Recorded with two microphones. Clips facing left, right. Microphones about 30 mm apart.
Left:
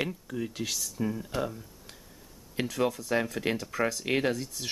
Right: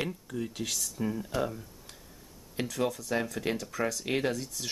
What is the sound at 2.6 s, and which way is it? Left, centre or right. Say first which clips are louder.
Speech: left 2 dB; centre.